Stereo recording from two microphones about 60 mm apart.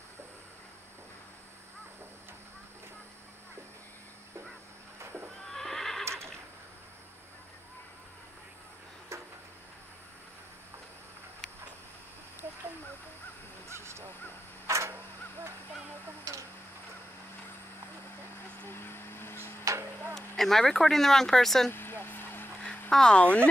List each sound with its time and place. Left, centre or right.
5.5 s neigh: centre
9.1 s vehicle: right
13.7 s crow: right
14.7 s vehicle: right
18.6 s vehicle: left
19.6 s a sound: right
20.2 s speech: centre
21.6 s vehicle: left
22.8 s speech: centre